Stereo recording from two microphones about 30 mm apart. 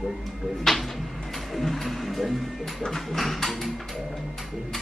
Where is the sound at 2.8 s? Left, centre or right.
Centre.